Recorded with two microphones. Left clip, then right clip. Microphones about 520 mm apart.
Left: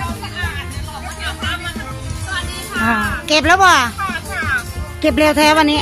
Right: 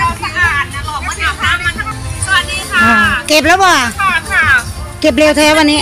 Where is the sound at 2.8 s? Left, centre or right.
Left.